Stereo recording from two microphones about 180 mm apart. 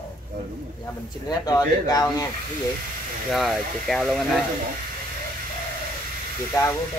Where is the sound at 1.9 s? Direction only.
20° left (ahead or behind).